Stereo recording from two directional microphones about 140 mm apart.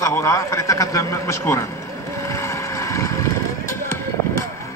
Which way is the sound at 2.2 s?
20° left (ahead or behind).